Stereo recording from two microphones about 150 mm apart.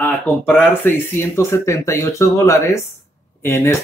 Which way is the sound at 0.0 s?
5° left (ahead or behind).